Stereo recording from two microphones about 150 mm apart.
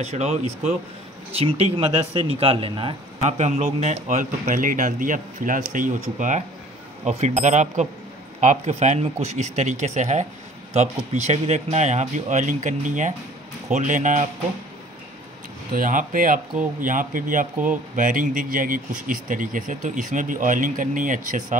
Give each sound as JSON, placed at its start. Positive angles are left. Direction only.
{"t": 0.0, "sound": "speech", "side_deg": -45}
{"t": 3.3, "sound": "a man's voice", "side_deg": -50}
{"t": 15.7, "sound": "a man's voice", "side_deg": -60}